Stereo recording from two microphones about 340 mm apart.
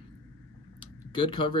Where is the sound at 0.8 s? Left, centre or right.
Centre.